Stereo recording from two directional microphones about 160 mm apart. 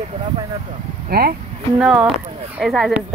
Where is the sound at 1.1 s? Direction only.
70° right (ahead or behind).